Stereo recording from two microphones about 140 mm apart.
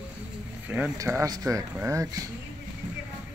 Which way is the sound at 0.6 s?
10° right (ahead or behind).